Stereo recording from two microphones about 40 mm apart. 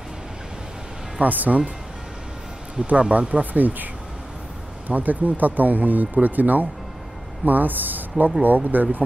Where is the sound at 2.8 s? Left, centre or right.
Right.